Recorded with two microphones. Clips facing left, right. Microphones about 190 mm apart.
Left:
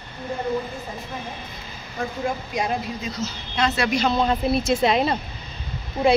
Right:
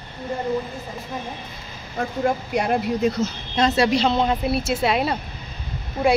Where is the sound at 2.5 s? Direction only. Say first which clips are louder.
Right 4 dB; 65° right (ahead or behind).